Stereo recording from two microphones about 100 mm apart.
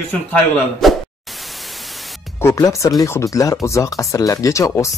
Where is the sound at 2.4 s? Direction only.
30° left (ahead or behind).